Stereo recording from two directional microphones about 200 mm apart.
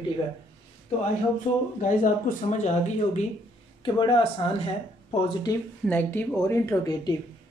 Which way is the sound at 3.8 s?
25° left (ahead or behind).